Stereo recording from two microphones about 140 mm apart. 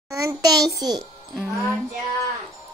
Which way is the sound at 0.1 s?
25° right (ahead or behind).